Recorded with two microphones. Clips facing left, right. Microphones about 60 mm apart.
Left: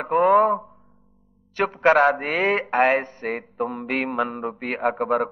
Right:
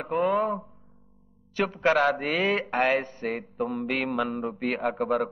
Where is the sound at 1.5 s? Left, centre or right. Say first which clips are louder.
Left 5 dB; left.